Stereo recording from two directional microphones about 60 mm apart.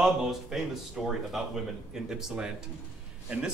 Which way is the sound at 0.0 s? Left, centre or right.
Centre.